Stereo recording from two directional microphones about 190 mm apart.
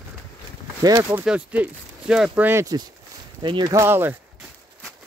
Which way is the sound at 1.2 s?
5° right (ahead or behind).